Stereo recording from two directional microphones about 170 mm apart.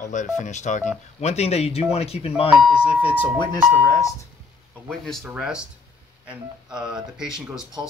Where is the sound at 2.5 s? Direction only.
5° right (ahead or behind).